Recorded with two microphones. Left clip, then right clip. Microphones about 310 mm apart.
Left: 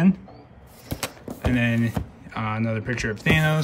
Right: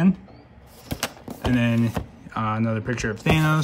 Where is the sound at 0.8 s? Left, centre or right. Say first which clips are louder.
Right 2 dB; centre.